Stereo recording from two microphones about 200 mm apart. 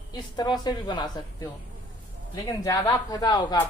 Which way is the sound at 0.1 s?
20° left (ahead or behind).